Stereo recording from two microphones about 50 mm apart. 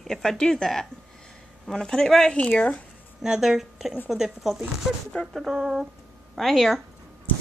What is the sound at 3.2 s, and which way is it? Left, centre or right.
A woman's voice, centre.